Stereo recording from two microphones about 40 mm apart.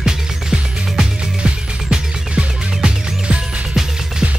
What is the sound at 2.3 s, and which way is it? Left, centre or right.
Music, right.